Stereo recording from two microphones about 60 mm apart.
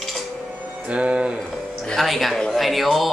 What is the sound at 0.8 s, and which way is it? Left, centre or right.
Speech, centre.